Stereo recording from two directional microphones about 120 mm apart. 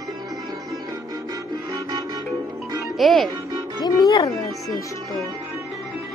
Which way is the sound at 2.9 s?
Centre (ahead or behind).